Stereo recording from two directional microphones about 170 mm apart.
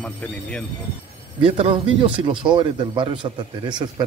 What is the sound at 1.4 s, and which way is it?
A man's voice, 30° right (ahead or behind).